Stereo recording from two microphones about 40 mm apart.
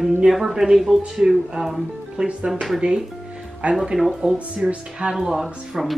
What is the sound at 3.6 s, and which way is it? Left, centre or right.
Music, right.